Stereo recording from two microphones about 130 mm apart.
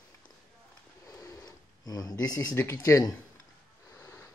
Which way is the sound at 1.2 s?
30° left (ahead or behind).